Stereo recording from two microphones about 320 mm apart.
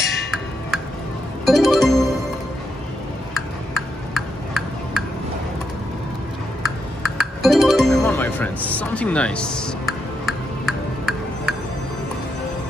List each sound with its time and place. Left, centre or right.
1.4 s music: centre
3.3 s tick-tock: centre
6.6 s music: centre